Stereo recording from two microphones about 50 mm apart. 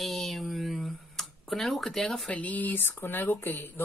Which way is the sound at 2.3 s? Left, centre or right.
Left.